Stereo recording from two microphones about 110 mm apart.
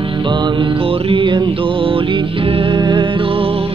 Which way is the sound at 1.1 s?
50° right (ahead or behind).